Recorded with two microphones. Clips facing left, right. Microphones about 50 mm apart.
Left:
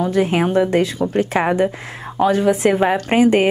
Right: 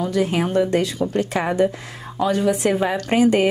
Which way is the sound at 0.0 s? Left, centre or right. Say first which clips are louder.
Left 4 dB; left.